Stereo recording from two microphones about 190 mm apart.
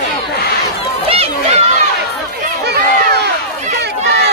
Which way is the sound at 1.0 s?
30° right (ahead or behind).